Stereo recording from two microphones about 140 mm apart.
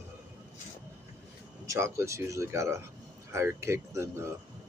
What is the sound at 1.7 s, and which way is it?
Speech, 20° right (ahead or behind).